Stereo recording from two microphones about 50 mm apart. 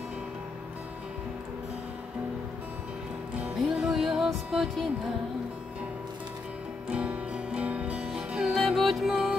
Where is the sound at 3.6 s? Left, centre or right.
Centre.